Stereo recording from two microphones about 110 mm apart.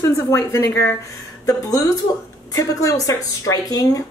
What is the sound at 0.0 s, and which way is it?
Speech, 25° left (ahead or behind).